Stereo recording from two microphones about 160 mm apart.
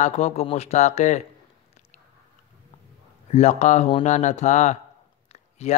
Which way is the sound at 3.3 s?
45° left (ahead or behind).